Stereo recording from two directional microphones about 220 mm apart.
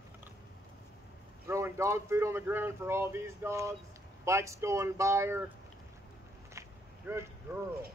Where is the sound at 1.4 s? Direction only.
10° right (ahead or behind).